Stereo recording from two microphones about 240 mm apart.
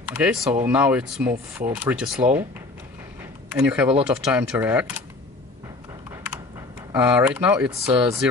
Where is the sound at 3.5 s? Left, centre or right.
Centre.